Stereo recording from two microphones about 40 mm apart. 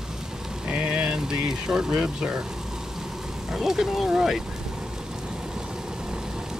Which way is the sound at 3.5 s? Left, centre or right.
Centre.